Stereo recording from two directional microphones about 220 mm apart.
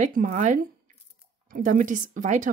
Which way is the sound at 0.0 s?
35° right (ahead or behind).